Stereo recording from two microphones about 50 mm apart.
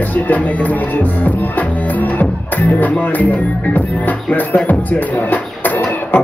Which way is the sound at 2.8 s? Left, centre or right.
Left.